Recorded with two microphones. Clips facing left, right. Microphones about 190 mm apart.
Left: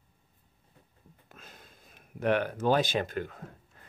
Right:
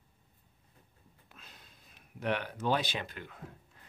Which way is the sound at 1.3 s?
45° left (ahead or behind).